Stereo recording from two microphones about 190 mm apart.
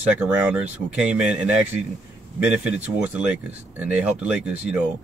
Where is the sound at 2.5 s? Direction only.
5° right (ahead or behind).